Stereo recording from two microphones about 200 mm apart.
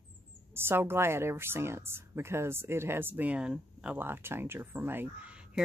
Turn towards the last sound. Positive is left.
turn(degrees=-5)  # may be behind; listen again after turning